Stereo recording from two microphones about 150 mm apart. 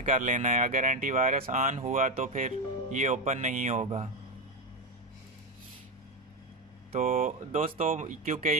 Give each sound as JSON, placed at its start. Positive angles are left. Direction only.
{"t": 0.0, "sound": "speech", "side_deg": -60}
{"t": 7.0, "sound": "speech", "side_deg": -60}